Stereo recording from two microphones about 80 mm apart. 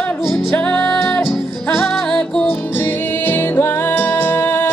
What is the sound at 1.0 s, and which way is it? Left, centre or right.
Music, centre.